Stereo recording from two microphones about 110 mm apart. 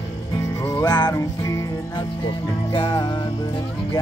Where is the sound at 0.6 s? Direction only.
30° left (ahead or behind).